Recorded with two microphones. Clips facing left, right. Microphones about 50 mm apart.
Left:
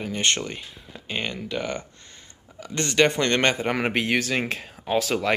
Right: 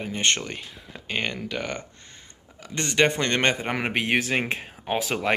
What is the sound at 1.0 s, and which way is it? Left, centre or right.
Speech, right.